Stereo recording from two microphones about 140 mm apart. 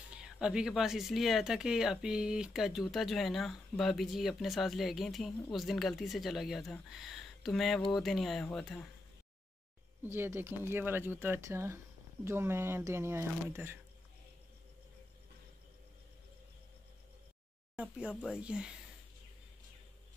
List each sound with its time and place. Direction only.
0.1 s speech: 5° right (ahead or behind)
10.0 s speech: 15° right (ahead or behind)
17.7 s speech: 10° right (ahead or behind)